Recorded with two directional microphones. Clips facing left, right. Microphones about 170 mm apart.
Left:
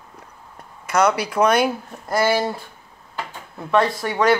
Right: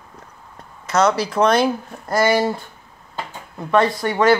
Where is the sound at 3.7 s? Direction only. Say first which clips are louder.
Right 2 dB; centre (ahead or behind).